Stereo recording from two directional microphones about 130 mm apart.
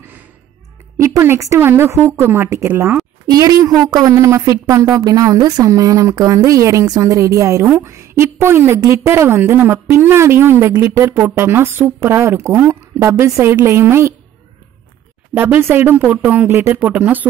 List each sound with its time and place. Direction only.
0.9 s a woman's voice: 20° right (ahead or behind)
3.3 s a woman's voice: 30° right (ahead or behind)
15.3 s speech: 15° right (ahead or behind)